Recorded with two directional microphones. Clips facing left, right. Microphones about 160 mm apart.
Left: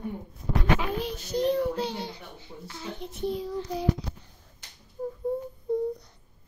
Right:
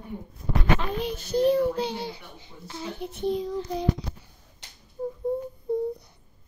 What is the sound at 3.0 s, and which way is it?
Speech, 10° right (ahead or behind).